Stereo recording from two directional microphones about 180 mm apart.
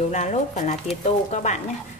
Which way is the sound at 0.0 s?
40° left (ahead or behind).